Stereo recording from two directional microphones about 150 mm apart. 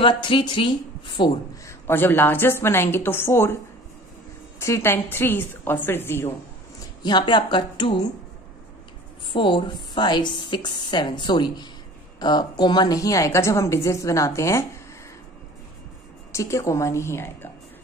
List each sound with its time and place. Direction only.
0.0 s a woman's voice: 35° left (ahead or behind)
1.7 s a woman's voice: 15° left (ahead or behind)
4.6 s a woman's voice: 20° left (ahead or behind)
7.0 s a woman's voice: 30° left (ahead or behind)
9.3 s a woman's voice: 35° left (ahead or behind)
16.3 s a woman's voice: 20° left (ahead or behind)